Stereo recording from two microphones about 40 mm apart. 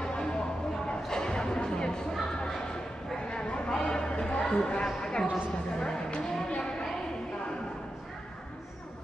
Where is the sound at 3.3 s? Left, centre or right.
Left.